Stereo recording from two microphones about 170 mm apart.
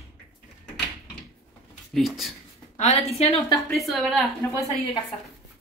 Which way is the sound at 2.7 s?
40° left (ahead or behind).